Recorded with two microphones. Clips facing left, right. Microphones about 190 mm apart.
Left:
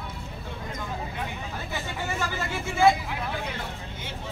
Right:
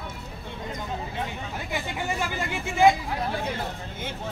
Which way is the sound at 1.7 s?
15° right (ahead or behind).